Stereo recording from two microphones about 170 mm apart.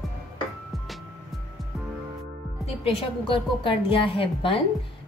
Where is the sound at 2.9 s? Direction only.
35° left (ahead or behind).